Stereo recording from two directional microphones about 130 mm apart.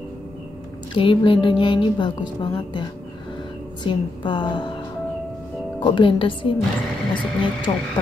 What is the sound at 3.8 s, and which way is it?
Speech, 35° left (ahead or behind).